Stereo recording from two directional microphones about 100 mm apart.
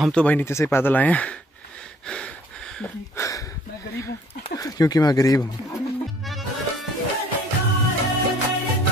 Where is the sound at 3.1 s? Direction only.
30° left (ahead or behind).